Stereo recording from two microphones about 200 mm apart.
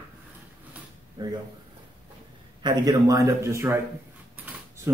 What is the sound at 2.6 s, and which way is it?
Speech, 20° right (ahead or behind).